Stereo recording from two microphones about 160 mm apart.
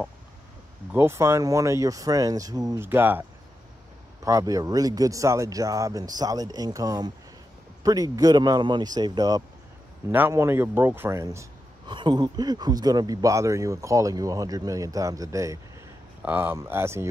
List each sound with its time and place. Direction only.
0.9 s a man's voice: 15° right (ahead or behind)
11.9 s a man's voice: 30° right (ahead or behind)